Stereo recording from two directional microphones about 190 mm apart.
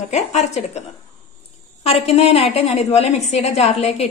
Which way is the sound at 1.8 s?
30° left (ahead or behind).